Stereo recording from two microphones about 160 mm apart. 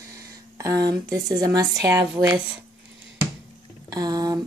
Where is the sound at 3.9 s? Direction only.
25° right (ahead or behind).